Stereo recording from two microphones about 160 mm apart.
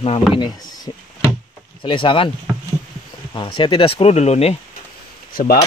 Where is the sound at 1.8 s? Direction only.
30° left (ahead or behind).